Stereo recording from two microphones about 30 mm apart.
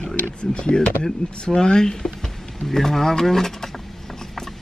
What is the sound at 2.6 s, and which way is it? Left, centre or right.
Mechanisms, centre.